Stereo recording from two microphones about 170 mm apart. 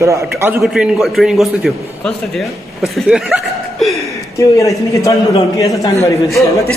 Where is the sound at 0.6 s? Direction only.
Centre (ahead or behind).